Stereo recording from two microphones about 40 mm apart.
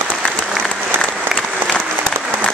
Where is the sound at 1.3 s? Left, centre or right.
Right.